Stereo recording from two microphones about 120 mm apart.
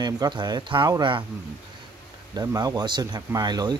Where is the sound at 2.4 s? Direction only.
35° right (ahead or behind).